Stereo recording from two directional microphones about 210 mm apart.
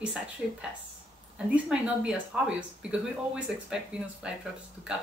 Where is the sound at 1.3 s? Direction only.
5° right (ahead or behind).